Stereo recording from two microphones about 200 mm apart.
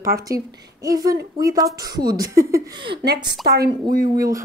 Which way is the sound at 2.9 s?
55° right (ahead or behind).